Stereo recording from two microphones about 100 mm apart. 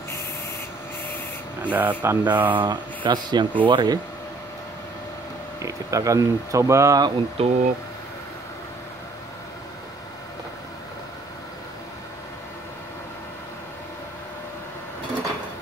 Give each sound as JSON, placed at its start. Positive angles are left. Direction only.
{"t": 1.6, "sound": "speech", "side_deg": -15}
{"t": 2.6, "sound": "speech", "side_deg": -50}
{"t": 5.6, "sound": "speech", "side_deg": -35}
{"t": 7.4, "sound": "speech", "side_deg": -75}